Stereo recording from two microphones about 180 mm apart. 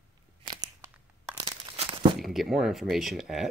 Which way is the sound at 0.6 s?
20° right (ahead or behind).